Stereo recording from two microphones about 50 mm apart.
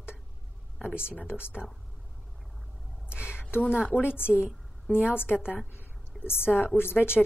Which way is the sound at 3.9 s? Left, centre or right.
Left.